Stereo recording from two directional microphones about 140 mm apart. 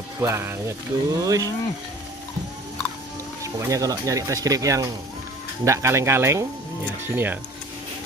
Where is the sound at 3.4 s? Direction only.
25° right (ahead or behind).